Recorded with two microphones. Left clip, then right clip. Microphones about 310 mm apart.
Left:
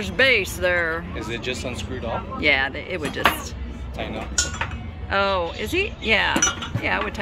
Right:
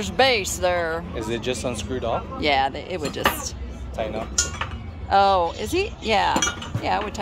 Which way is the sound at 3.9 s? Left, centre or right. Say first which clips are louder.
Right 3 dB; right.